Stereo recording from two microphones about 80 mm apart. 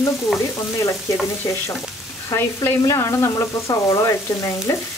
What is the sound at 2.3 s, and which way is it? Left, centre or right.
Frying, left.